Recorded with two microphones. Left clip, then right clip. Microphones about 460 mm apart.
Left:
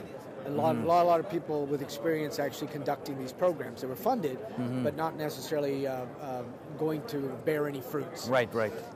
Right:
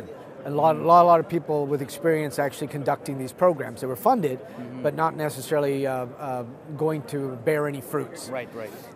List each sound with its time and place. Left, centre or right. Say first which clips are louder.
0.5 s a man's voice: right 9 dB; right
8.3 s speech: left 5 dB; left